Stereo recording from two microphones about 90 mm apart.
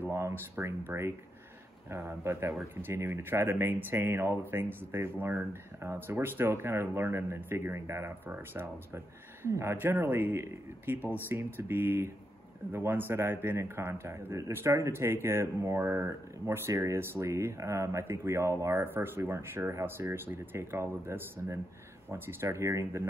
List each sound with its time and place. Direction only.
0.1 s speech: 30° right (ahead or behind)